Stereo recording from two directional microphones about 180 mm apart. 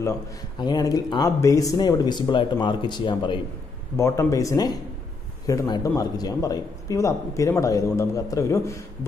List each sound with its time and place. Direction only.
0.0 s speech: 20° left (ahead or behind)
3.9 s speech: 15° left (ahead or behind)